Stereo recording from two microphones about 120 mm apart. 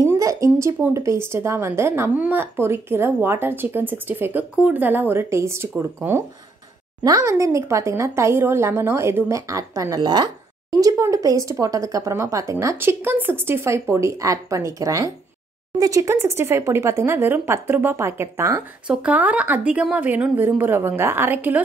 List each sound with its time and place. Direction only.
0.0 s a woman's voice: 25° right (ahead or behind)